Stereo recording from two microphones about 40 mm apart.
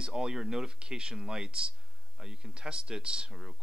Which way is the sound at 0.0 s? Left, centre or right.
Centre.